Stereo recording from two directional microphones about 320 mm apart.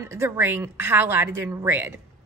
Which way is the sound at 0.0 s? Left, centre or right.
Centre.